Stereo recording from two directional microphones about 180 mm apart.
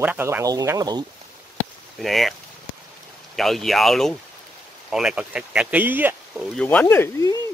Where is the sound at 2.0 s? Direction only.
Centre (ahead or behind).